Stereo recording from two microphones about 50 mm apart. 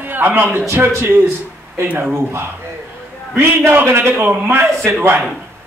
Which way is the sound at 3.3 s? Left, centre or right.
Right.